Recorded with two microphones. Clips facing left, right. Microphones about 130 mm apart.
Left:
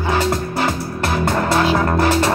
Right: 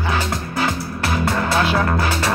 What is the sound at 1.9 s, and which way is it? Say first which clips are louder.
Music: left 4 dB; 30° left (ahead or behind).